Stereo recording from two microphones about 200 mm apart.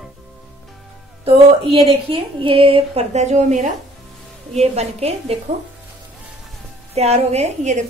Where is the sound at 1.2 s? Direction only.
25° right (ahead or behind).